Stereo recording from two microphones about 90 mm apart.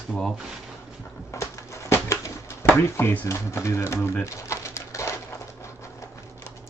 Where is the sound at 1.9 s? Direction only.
35° left (ahead or behind).